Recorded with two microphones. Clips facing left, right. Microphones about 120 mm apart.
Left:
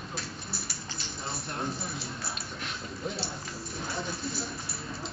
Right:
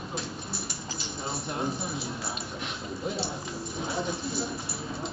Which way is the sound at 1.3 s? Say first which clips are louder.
Right 3 dB; centre (ahead or behind).